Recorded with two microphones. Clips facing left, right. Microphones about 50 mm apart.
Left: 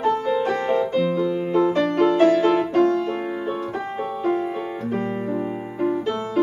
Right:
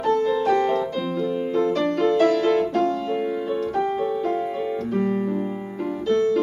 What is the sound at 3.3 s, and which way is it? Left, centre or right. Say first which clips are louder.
Music: right 2 dB; centre.